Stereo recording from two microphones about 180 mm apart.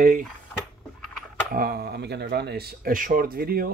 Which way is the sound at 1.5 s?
55° right (ahead or behind).